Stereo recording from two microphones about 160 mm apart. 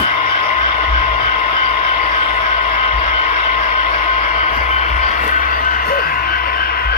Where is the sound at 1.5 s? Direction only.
40° left (ahead or behind).